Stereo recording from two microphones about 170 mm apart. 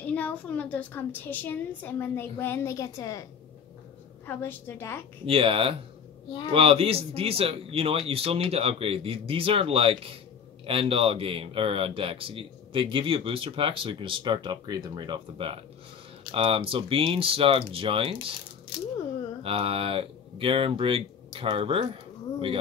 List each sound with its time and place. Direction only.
0.0 s a woman's voice: 10° left (ahead or behind)
4.3 s a woman's voice: 10° left (ahead or behind)
5.2 s speech: 35° right (ahead or behind)
19.4 s speech: 35° right (ahead or behind)